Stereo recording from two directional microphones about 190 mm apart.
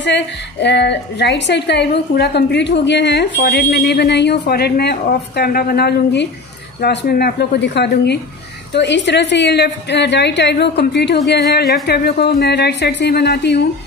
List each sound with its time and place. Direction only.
0.0 s a woman's voice: 65° left (ahead or behind)